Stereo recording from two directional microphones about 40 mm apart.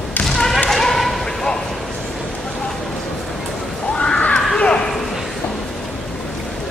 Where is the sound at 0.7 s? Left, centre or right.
Centre.